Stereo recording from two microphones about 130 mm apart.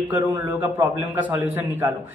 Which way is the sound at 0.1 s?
15° right (ahead or behind).